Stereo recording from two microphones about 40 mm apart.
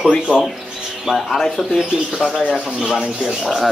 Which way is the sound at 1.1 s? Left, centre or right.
Centre.